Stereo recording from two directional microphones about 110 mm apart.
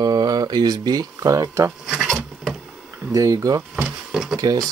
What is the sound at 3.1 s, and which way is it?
Speech, 30° right (ahead or behind).